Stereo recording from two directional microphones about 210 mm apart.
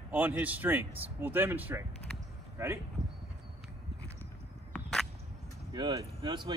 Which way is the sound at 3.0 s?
35° right (ahead or behind).